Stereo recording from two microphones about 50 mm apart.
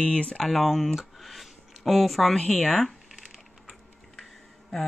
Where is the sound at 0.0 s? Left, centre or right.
Left.